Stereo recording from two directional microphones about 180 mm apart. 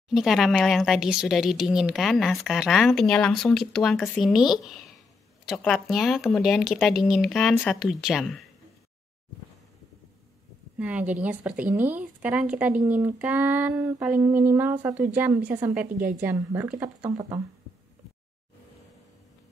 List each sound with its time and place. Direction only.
0.1 s speech: centre (ahead or behind)
10.8 s speech: 5° right (ahead or behind)